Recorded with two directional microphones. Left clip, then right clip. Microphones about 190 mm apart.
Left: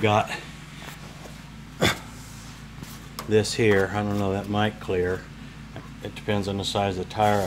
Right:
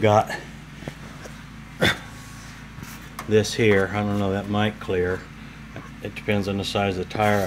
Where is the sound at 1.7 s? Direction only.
Centre (ahead or behind).